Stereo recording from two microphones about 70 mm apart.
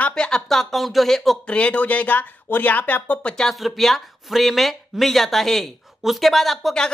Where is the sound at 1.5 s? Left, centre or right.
Centre.